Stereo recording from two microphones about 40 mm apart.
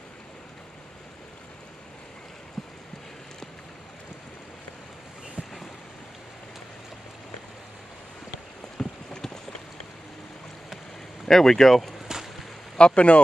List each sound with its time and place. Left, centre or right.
8.7 s a sound: centre
11.2 s speech: centre
12.1 s whip: centre
12.7 s speech: left